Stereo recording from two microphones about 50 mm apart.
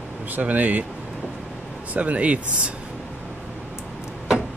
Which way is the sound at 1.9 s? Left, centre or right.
Right.